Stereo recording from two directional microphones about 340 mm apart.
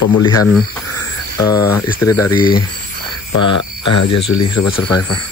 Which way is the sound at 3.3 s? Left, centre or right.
Left.